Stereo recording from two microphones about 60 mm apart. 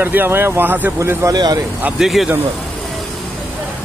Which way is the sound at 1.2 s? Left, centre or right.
Right.